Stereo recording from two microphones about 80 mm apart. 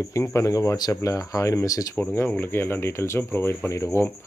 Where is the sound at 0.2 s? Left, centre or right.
Left.